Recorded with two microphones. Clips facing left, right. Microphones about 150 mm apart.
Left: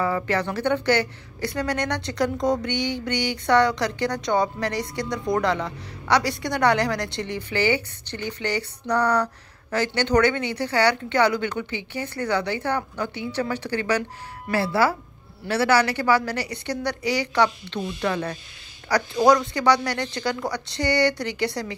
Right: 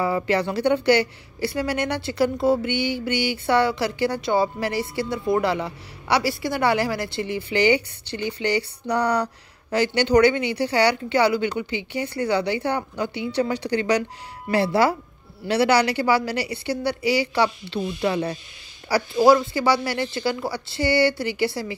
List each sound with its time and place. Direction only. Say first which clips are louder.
0.0 s a woman's voice: right 2 dB; 10° right (ahead or behind)